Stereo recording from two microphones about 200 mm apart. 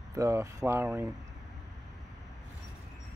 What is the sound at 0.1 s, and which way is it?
Speech, 15° right (ahead or behind).